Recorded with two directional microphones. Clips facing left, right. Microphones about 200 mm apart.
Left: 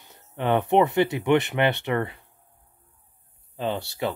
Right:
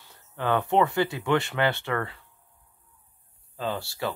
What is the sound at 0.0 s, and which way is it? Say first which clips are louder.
Speech: left 3 dB; 20° left (ahead or behind).